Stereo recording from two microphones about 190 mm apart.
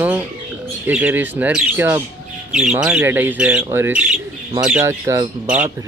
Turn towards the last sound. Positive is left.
turn(degrees=-10)  # may be behind; listen again after turning